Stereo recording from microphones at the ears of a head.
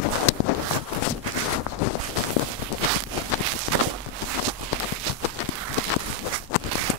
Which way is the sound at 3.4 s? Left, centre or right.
Right.